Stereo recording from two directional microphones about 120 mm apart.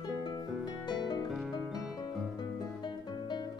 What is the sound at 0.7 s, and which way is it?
Harp, 35° left (ahead or behind).